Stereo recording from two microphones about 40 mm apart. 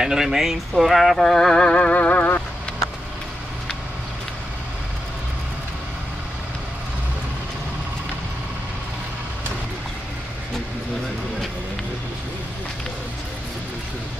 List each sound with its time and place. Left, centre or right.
0.0 s speech: centre
1.2 s a sound: centre
1.6 s music: left
2.0 s vehicle: left